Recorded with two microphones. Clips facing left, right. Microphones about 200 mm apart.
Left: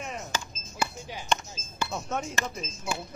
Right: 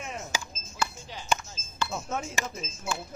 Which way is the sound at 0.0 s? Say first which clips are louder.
Left 1 dB; 5° right (ahead or behind).